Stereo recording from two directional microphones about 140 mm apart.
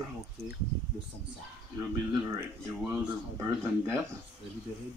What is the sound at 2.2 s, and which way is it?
Speech, 20° right (ahead or behind).